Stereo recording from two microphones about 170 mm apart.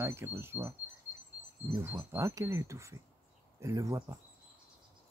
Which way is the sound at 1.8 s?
15° right (ahead or behind).